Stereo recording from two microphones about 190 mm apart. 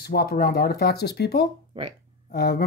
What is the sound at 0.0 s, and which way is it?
Speech, 55° left (ahead or behind).